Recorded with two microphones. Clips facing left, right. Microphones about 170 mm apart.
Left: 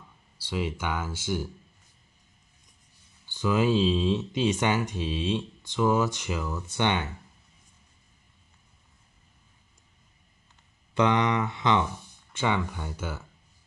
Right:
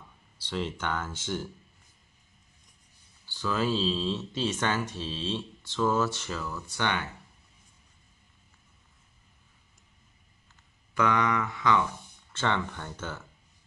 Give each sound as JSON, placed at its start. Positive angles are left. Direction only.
{"t": 0.4, "sound": "speech", "side_deg": 10}
{"t": 3.3, "sound": "speech", "side_deg": 15}
{"t": 11.0, "sound": "speech", "side_deg": 25}
{"t": 12.3, "sound": "speech", "side_deg": 15}